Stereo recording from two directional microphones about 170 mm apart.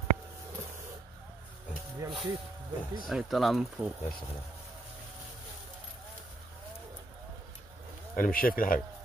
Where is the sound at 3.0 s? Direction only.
Centre (ahead or behind).